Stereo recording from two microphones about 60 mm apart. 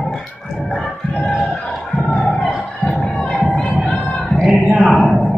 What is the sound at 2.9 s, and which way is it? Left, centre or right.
Music, centre.